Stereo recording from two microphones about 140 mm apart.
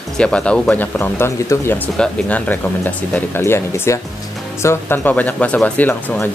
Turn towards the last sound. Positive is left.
turn(degrees=15)  # may be behind; listen again after turning